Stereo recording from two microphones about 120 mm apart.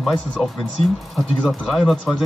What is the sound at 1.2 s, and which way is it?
Speech, centre (ahead or behind).